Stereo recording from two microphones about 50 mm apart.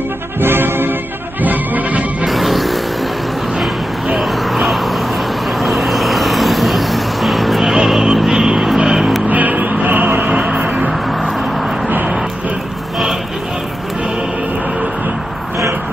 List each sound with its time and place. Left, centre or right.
0.4 s music: right
1.4 s music: right
2.2 s music: centre
4.1 s vehicle: centre
9.3 s music: right
10.3 s a sound: centre